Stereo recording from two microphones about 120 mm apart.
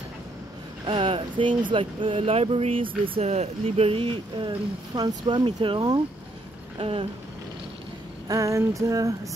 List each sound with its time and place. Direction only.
0.8 s speech: 45° right (ahead or behind)
3.2 s speech: 60° right (ahead or behind); by 5.8 s 45° right (ahead or behind)
6.8 s speech: 50° right (ahead or behind)
8.3 s female singing: 25° right (ahead or behind)